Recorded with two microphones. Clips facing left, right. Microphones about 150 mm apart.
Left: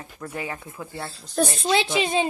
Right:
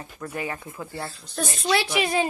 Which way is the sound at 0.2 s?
15° left (ahead or behind).